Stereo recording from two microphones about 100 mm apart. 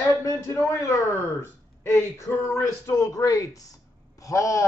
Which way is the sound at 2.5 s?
30° left (ahead or behind).